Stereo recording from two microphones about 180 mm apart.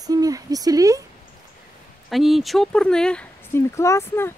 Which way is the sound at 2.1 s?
Centre (ahead or behind).